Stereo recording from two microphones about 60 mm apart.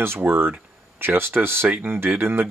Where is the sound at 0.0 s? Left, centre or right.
Right.